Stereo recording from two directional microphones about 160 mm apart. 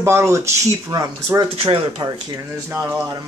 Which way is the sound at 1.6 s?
35° right (ahead or behind).